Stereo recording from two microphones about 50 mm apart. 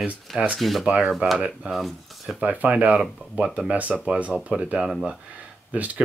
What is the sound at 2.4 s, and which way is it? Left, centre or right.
Speech, right.